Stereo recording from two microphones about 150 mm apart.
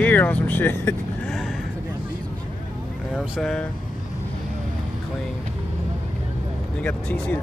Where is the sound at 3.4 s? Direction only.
5° left (ahead or behind).